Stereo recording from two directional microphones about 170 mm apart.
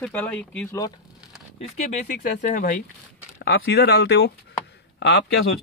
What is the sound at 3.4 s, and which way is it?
Speech, 75° left (ahead or behind).